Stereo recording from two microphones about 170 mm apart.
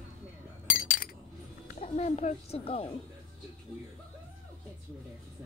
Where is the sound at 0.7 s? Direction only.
50° left (ahead or behind).